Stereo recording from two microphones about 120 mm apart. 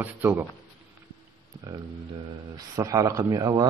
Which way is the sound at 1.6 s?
35° right (ahead or behind).